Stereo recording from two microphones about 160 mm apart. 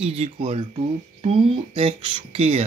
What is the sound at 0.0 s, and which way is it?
Speech, 40° right (ahead or behind).